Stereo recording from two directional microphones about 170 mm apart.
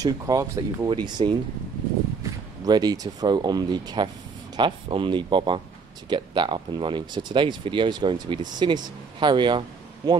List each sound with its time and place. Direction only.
0.0 s speech: 20° right (ahead or behind)
2.6 s speech: 25° right (ahead or behind)